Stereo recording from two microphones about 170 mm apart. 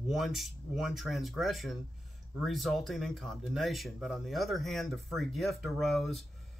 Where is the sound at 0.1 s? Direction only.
Centre (ahead or behind).